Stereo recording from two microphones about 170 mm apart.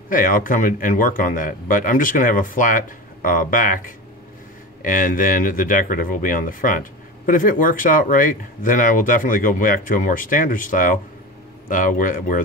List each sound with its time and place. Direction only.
0.1 s speech: 55° left (ahead or behind)